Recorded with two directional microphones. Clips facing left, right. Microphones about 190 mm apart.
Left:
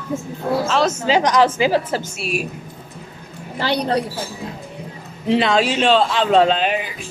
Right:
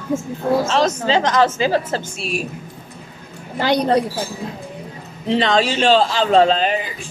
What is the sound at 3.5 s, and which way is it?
Speech, 45° right (ahead or behind).